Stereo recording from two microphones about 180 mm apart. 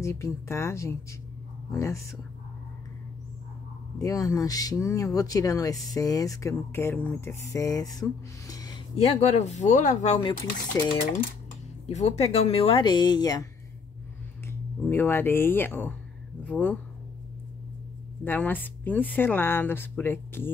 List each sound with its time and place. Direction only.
0.0 s speech: 15° left (ahead or behind)
4.0 s speech: 20° left (ahead or behind)
8.9 s speech: 35° left (ahead or behind)
10.8 s speech: 15° left (ahead or behind)
11.8 s speech: 35° left (ahead or behind); by 13.5 s 20° left (ahead or behind)
14.5 s speech: 10° left (ahead or behind)
18.2 s speech: 10° left (ahead or behind)